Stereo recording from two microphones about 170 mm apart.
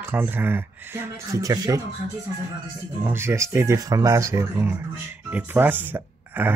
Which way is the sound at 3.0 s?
15° right (ahead or behind).